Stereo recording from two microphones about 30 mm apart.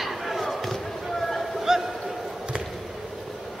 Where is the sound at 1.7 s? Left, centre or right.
Centre.